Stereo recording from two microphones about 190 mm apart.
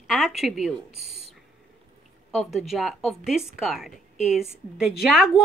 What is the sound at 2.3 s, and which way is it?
Speech, centre (ahead or behind).